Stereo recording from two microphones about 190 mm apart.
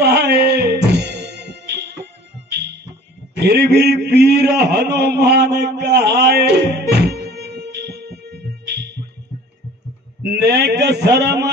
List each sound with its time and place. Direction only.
0.0 s music: 60° right (ahead or behind)
3.3 s a man's voice: 60° right (ahead or behind)
10.2 s a man's voice: 60° right (ahead or behind)